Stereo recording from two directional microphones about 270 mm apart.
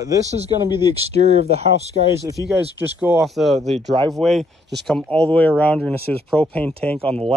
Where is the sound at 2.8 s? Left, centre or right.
Centre.